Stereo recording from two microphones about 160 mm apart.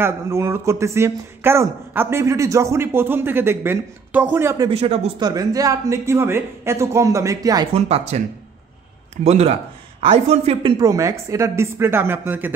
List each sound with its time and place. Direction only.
0.0 s speech: 15° right (ahead or behind)
4.6 s speech: 40° right (ahead or behind)
5.2 s speech: 25° right (ahead or behind)
7.7 s a man's voice: 40° right (ahead or behind)
10.8 s speech: 20° right (ahead or behind)